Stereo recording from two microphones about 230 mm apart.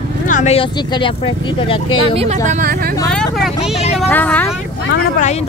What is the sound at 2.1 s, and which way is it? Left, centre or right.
Speech, right.